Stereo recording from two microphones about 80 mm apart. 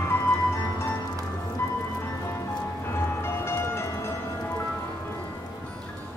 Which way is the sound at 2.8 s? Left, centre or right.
Left.